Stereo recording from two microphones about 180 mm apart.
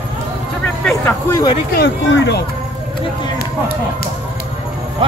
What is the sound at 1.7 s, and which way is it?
Speech, 65° left (ahead or behind).